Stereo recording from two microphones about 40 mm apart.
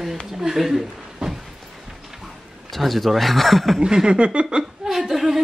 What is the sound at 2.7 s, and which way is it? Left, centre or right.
Speech, centre.